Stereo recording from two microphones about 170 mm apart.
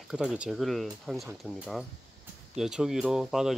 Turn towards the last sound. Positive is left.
turn(degrees=-5)  # may be behind; listen again after turning